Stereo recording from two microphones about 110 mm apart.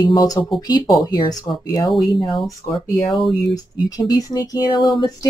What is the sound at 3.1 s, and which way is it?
Speech, centre (ahead or behind).